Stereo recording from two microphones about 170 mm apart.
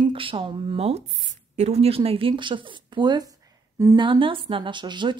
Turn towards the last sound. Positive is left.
turn(degrees=-25)  # may be behind; listen again after turning